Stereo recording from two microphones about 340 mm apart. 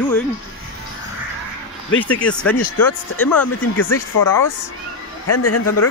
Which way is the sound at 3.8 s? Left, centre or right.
Left.